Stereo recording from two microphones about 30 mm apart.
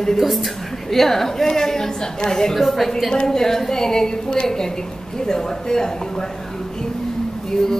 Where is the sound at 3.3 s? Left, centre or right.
Centre.